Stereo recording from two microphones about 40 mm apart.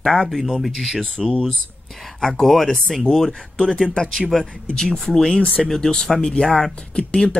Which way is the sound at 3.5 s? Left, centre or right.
Centre.